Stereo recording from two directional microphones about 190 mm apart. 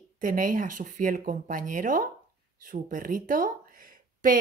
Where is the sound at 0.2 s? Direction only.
45° right (ahead or behind).